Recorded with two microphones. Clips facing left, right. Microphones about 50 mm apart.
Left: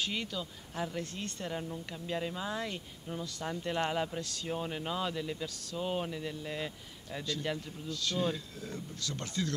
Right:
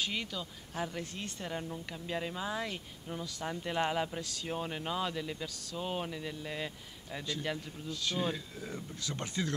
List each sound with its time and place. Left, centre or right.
0.0 s speech: centre
7.9 s speech: centre